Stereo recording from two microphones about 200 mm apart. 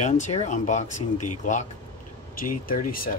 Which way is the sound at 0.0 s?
35° left (ahead or behind).